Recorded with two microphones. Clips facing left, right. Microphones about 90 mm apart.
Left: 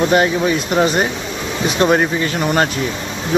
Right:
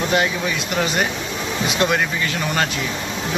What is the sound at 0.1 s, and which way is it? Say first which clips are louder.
Speech: left 6 dB; 35° left (ahead or behind).